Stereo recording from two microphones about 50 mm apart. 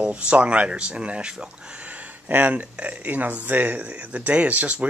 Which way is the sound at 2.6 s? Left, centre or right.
Right.